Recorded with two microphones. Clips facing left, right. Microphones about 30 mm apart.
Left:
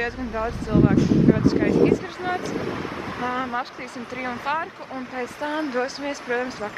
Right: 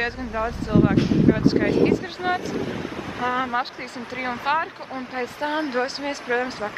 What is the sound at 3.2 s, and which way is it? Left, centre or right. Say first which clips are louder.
Speech: right 3 dB; centre.